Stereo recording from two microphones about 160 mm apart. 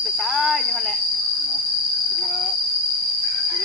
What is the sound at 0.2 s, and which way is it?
Cricket, centre (ahead or behind).